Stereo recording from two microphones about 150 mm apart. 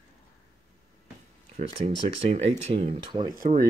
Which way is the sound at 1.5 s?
40° right (ahead or behind).